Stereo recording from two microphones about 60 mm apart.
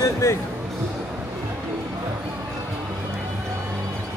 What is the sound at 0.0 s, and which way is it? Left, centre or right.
Speech, left.